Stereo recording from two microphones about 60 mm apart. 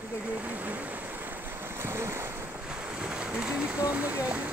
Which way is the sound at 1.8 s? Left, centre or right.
Right.